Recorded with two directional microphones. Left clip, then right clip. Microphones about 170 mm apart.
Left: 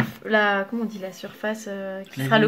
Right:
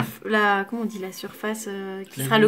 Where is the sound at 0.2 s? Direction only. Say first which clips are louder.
Even; 50° right (ahead or behind).